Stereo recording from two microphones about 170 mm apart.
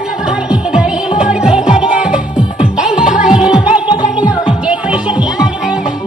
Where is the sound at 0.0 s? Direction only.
5° right (ahead or behind).